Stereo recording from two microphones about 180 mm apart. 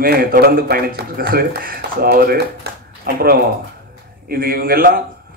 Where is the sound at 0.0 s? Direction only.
55° right (ahead or behind).